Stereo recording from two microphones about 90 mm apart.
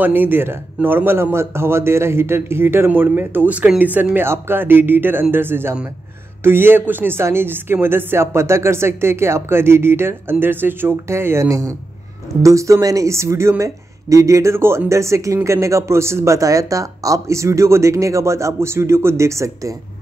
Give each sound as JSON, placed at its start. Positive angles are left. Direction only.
{"t": 0.0, "sound": "a man's voice", "side_deg": -20}